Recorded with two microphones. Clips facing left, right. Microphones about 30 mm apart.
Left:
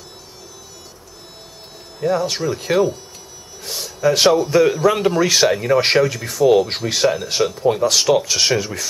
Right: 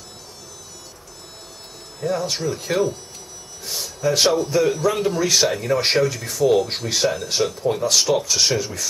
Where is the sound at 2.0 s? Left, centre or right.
Centre.